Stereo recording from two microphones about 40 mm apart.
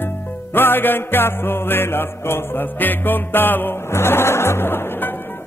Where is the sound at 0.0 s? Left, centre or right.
Left.